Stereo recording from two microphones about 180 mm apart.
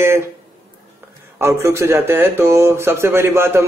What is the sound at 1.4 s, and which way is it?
Speech, 15° right (ahead or behind).